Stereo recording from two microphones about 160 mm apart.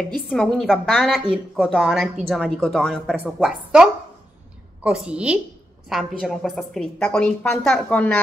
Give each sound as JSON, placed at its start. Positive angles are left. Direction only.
{"t": 0.3, "sound": "a woman's voice", "side_deg": 0}